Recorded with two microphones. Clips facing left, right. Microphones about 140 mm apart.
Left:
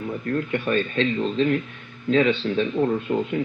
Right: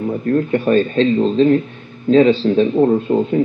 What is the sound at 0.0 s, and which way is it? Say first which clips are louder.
Speech: right 9 dB; 35° right (ahead or behind).